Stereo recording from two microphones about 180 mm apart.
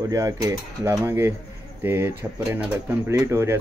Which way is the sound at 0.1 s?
20° right (ahead or behind).